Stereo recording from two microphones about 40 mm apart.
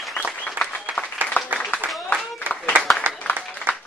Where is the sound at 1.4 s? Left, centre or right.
Left.